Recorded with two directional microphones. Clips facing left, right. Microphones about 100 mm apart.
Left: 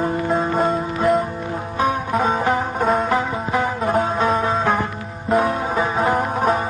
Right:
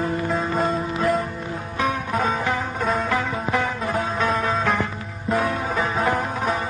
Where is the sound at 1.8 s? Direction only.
35° left (ahead or behind).